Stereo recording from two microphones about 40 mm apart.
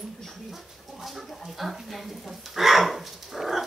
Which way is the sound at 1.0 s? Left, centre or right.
Centre.